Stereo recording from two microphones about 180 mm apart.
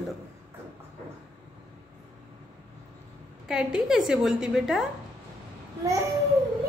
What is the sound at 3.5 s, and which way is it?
A woman's voice, 5° right (ahead or behind).